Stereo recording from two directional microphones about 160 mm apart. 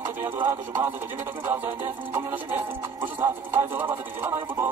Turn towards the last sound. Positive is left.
turn(degrees=-15)  # may be behind; listen again after turning